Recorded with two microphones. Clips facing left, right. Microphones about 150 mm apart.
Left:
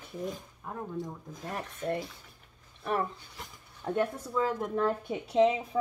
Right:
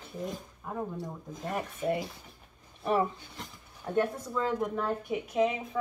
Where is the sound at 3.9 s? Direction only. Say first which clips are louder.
Right 1 dB; 10° left (ahead or behind).